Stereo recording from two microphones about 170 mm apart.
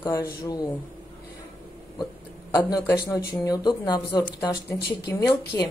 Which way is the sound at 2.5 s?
25° left (ahead or behind).